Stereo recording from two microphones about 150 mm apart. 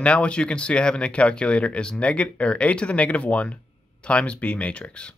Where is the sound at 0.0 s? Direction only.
5° left (ahead or behind).